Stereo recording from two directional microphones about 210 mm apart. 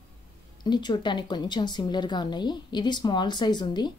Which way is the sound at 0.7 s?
20° left (ahead or behind).